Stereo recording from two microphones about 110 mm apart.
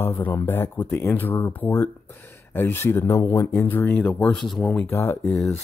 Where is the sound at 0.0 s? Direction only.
20° left (ahead or behind).